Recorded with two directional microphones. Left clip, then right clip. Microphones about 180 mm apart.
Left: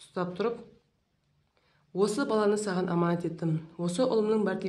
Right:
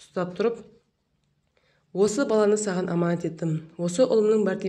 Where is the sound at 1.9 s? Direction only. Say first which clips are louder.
Right 5 dB; 15° right (ahead or behind).